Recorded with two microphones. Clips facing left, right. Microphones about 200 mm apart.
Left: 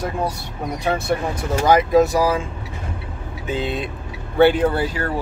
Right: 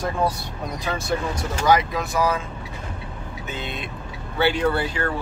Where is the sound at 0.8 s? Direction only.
60° left (ahead or behind).